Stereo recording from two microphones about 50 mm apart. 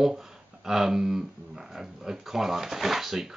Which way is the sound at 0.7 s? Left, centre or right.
Centre.